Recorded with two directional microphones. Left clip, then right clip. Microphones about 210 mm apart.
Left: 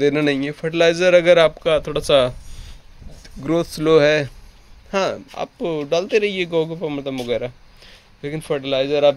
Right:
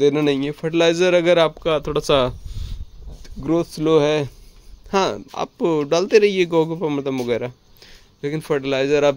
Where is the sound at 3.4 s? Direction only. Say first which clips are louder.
Even; 5° right (ahead or behind).